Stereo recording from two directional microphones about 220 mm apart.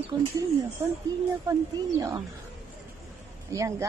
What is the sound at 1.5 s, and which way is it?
Speech, 15° right (ahead or behind).